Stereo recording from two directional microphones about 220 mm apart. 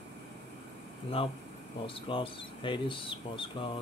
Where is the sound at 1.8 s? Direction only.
25° left (ahead or behind).